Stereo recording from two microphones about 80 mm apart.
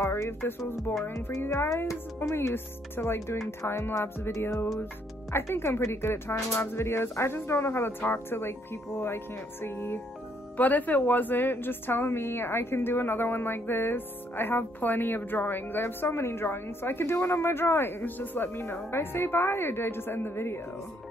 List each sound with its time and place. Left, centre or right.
0.0 s speech: left